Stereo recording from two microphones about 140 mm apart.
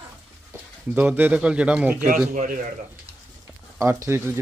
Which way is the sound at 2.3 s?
60° right (ahead or behind).